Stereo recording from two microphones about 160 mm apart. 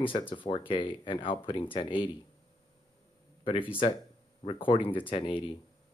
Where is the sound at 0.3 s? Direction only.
30° left (ahead or behind).